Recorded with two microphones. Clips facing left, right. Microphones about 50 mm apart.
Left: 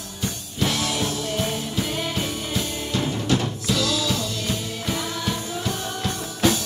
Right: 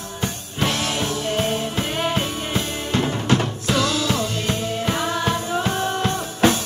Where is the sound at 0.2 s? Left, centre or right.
Right.